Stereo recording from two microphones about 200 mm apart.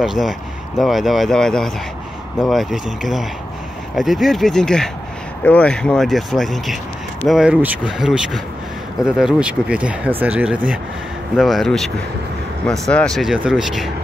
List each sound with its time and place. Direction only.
0.0 s speech: centre (ahead or behind)